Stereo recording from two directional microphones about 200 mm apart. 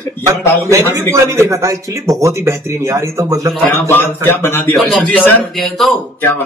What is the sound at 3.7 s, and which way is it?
Speech, 10° left (ahead or behind).